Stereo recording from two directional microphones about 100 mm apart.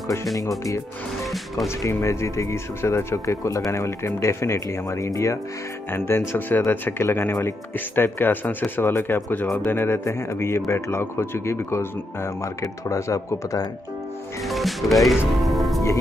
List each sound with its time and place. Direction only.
0.7 s speech: 30° left (ahead or behind)
14.4 s music: centre (ahead or behind)